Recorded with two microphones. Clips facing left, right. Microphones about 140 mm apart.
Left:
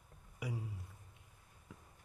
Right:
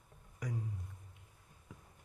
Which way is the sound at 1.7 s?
Centre (ahead or behind).